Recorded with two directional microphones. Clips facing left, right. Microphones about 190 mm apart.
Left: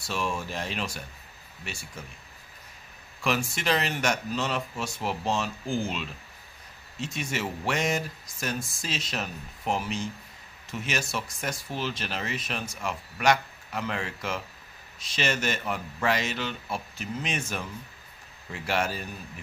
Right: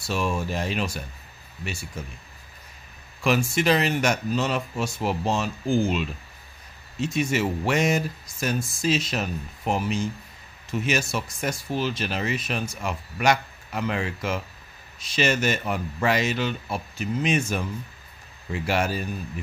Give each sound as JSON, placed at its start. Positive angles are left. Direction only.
{"t": 0.1, "sound": "speech", "side_deg": -10}
{"t": 3.3, "sound": "speech", "side_deg": -5}